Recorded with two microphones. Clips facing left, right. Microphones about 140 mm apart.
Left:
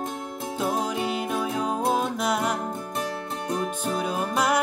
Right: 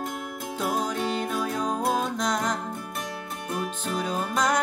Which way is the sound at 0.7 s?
10° left (ahead or behind).